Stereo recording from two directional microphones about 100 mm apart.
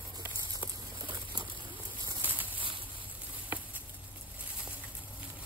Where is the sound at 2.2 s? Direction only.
15° right (ahead or behind).